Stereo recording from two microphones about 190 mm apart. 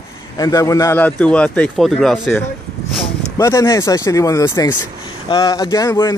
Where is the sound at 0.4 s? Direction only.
20° left (ahead or behind); by 2.4 s centre (ahead or behind).